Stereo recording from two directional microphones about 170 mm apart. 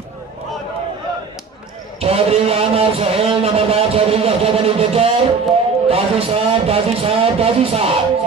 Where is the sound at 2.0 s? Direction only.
35° right (ahead or behind).